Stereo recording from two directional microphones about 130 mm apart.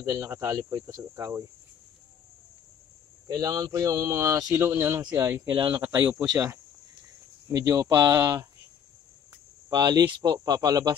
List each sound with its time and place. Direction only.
0.1 s speech: 20° right (ahead or behind)
3.3 s speech: 25° right (ahead or behind)
5.9 s speech: 15° right (ahead or behind)
7.4 s speech: 25° right (ahead or behind)
9.7 s speech: 30° right (ahead or behind)